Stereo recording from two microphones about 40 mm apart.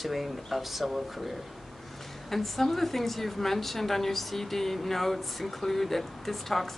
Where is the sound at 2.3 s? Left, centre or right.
Centre.